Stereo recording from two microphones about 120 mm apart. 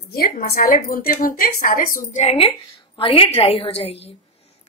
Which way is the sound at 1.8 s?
75° left (ahead or behind).